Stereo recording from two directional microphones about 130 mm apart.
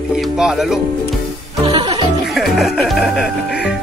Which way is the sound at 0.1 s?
5° right (ahead or behind).